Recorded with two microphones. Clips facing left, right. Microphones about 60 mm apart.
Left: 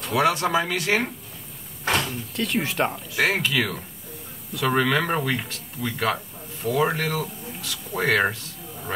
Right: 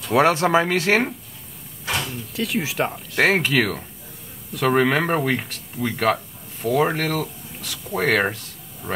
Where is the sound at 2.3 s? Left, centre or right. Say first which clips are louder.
Right 2 dB; centre.